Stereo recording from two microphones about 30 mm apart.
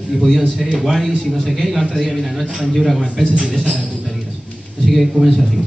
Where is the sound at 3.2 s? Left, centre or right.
Right.